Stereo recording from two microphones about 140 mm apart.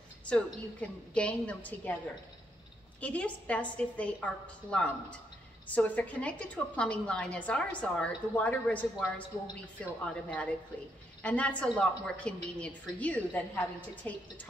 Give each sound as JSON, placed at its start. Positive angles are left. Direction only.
{"t": 0.3, "sound": "a woman's voice", "side_deg": 10}
{"t": 3.0, "sound": "a woman's voice", "side_deg": 10}